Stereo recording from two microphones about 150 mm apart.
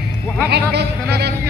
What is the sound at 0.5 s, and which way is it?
Speech, 90° right.